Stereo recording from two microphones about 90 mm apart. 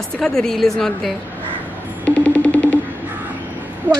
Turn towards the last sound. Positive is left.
turn(degrees=-20)  # may be behind; listen again after turning